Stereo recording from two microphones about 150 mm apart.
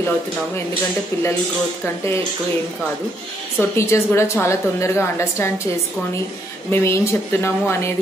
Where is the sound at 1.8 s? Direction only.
15° left (ahead or behind).